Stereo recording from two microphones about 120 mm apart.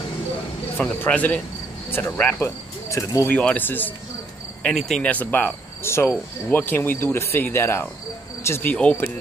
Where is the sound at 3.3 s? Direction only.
15° left (ahead or behind).